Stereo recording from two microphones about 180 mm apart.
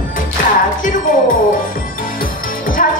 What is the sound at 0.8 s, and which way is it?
Speech, 45° left (ahead or behind).